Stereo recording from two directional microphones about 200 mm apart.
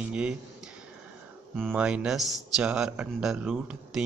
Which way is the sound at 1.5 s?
Centre (ahead or behind).